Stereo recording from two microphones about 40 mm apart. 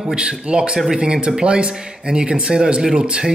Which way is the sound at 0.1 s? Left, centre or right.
Right.